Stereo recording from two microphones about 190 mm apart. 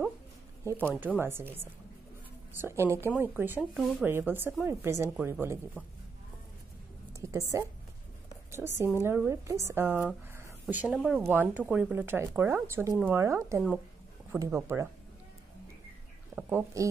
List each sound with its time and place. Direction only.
0.7 s speech: 10° right (ahead or behind)
7.2 s a woman's voice: 15° right (ahead or behind)
10.3 s a sound: 10° right (ahead or behind)
11.0 s speech: centre (ahead or behind)
16.3 s speech: 10° right (ahead or behind)